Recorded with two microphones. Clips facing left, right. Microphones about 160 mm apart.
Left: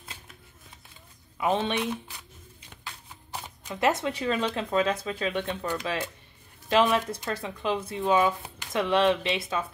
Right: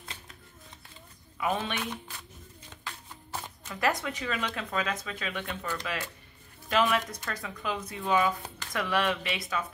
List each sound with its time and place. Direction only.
1.4 s speech: 25° left (ahead or behind)
3.3 s speech: 15° left (ahead or behind)